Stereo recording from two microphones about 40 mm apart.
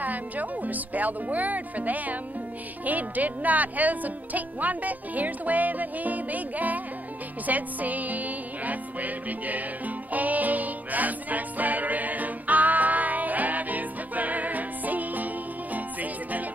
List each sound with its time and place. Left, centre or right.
0.0 s speech: right
7.4 s music: right